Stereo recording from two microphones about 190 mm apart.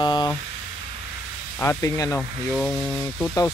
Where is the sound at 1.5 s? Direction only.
15° left (ahead or behind).